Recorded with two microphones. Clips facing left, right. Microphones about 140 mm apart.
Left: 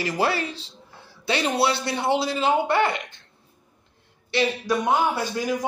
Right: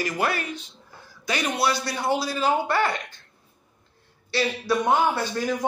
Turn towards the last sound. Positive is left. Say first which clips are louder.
# even
turn(degrees=10)  # may be behind; listen again after turning